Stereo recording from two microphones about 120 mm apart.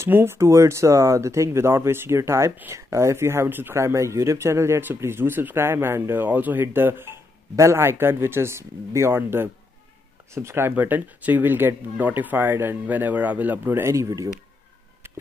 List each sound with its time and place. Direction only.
0.0 s speech: 20° right (ahead or behind)